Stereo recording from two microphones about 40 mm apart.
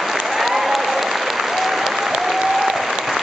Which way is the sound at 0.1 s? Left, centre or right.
Centre.